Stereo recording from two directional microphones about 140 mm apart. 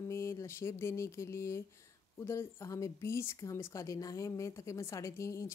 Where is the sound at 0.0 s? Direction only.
20° left (ahead or behind).